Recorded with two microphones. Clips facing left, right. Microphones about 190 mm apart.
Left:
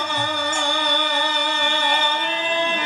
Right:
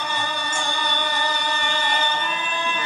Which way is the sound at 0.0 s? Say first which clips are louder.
Left 3 dB; 60° left (ahead or behind).